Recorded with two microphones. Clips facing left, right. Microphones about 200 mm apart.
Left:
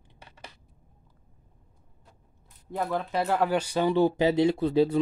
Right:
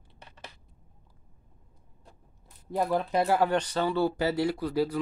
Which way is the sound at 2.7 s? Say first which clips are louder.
Right 2 dB; 15° right (ahead or behind).